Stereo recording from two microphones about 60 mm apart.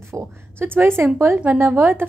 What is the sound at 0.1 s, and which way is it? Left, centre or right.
A woman's voice, right.